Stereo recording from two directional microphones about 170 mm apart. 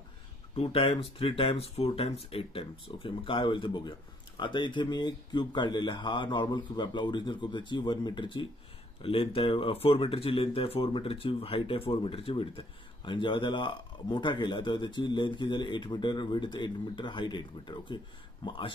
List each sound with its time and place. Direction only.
0.6 s speech: 35° left (ahead or behind)